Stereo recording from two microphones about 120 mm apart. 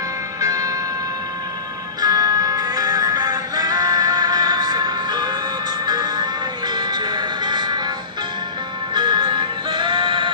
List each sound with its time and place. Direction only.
0.4 s music: 30° right (ahead or behind)
2.0 s music: 30° right (ahead or behind)
8.9 s music: 40° right (ahead or behind)